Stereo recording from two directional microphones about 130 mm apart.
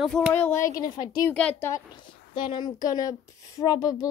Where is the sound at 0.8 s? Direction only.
30° left (ahead or behind).